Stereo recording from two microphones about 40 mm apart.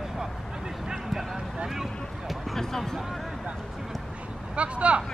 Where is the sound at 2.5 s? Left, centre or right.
Centre.